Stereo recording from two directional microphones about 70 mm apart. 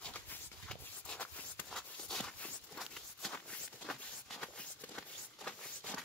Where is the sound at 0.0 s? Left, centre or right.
Centre.